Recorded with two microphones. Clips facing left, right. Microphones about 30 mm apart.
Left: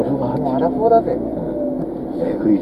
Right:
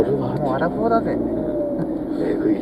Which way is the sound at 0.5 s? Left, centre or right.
Right.